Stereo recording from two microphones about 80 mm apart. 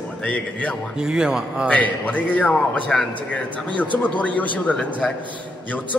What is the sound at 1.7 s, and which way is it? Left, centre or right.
A man's voice, centre.